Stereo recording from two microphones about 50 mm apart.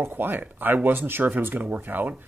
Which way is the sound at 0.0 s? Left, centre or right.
Right.